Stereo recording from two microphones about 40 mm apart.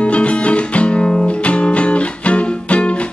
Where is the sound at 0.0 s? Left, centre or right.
Left.